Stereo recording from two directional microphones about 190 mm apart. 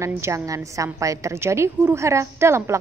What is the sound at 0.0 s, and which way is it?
A woman's voice, 15° right (ahead or behind).